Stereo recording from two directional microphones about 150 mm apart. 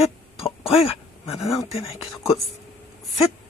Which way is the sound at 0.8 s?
40° left (ahead or behind).